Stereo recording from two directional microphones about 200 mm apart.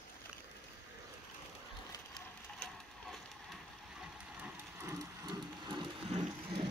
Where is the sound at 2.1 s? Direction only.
Centre (ahead or behind).